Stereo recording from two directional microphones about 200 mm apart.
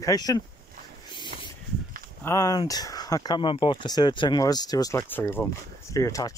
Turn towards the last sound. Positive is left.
turn(degrees=15)  # may be behind; listen again after turning